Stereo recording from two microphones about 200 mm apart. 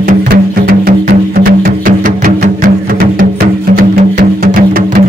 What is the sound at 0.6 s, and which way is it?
Music, 45° right (ahead or behind).